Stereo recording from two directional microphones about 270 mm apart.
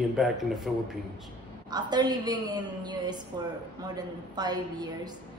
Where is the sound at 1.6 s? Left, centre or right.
Centre.